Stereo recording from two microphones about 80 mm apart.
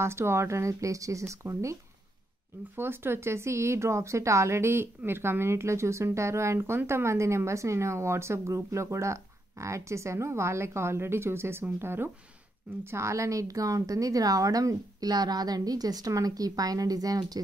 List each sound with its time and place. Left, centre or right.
0.0 s a woman's voice: right